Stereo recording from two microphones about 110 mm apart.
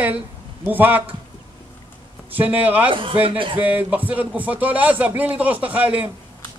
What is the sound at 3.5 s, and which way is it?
A man's voice, 15° right (ahead or behind).